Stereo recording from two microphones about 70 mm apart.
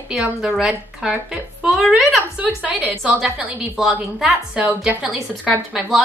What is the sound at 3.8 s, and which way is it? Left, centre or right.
Speech, centre.